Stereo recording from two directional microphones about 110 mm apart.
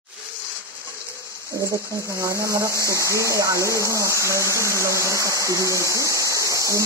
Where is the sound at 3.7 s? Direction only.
30° left (ahead or behind).